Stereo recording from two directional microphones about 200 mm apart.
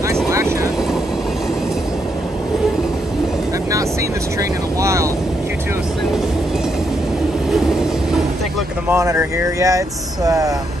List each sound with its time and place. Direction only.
0.1 s vehicle: 15° right (ahead or behind)
4.4 s vehicle: 15° right (ahead or behind)
8.8 s speech: 15° right (ahead or behind)